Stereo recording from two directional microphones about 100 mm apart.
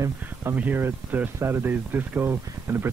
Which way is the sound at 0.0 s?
25° right (ahead or behind).